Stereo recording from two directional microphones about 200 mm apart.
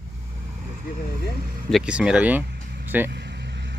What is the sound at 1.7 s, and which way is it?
Speech, 5° right (ahead or behind).